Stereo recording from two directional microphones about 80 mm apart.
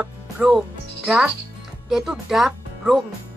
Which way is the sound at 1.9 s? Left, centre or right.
Centre.